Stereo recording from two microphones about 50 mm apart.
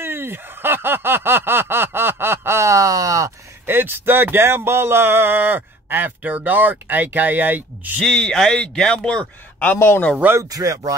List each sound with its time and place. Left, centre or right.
0.0 s a sound: right
3.6 s speech: right
8.1 s a man's voice: centre
9.8 s speech: left